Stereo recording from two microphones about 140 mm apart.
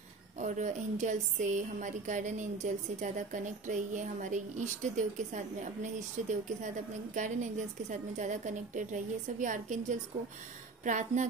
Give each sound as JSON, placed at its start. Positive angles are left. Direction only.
{"t": 0.4, "sound": "speech", "side_deg": -60}